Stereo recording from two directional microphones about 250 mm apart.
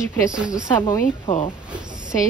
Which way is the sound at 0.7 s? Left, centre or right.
Centre.